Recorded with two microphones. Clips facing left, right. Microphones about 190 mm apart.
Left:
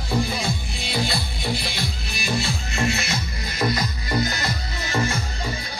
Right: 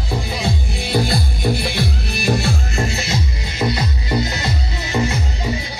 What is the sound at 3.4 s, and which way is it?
Music, 20° right (ahead or behind).